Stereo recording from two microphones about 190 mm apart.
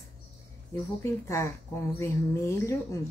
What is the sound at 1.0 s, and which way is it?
Speech, 15° left (ahead or behind).